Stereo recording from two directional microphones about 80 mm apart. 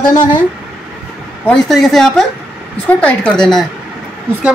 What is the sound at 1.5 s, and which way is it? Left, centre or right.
Speech, centre.